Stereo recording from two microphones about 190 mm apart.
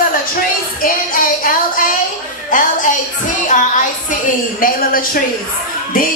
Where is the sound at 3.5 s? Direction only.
40° left (ahead or behind).